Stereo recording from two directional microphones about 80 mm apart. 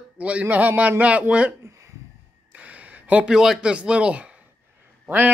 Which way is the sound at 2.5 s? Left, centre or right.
Centre.